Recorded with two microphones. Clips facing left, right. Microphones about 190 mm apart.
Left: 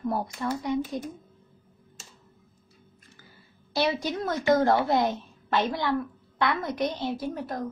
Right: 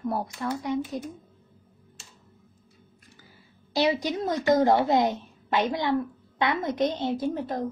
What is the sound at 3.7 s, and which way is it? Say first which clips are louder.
Speech: right 2 dB; 15° right (ahead or behind).